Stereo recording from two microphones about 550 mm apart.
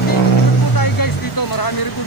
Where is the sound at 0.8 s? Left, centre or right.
Left.